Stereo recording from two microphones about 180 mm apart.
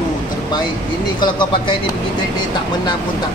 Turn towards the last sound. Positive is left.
turn(degrees=25)  # may be behind; listen again after turning